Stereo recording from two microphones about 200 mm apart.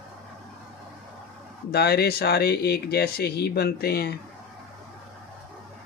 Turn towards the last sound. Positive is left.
turn(degrees=50)  # may be behind; listen again after turning